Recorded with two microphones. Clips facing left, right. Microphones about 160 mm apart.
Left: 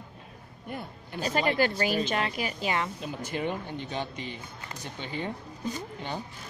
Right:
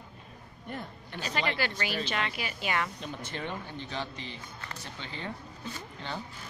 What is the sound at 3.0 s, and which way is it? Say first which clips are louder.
Speech: left 5 dB; 10° left (ahead or behind).